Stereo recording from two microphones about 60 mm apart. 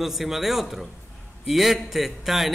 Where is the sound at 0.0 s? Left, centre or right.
Centre.